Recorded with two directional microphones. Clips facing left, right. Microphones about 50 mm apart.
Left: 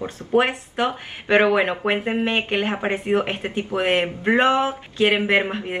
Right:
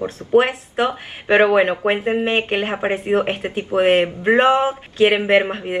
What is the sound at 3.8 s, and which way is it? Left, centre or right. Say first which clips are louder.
Speech: right 6 dB; right.